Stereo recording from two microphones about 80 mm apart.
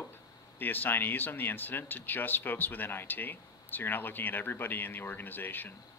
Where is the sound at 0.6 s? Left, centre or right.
Left.